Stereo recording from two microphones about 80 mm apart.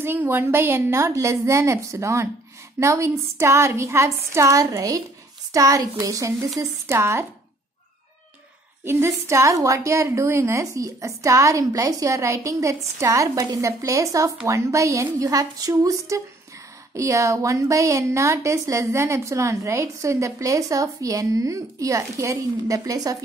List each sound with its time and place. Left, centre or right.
0.0 s a woman's voice: right
8.8 s a woman's voice: right